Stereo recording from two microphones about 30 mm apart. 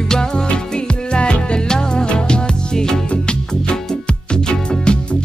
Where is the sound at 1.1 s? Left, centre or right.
Left.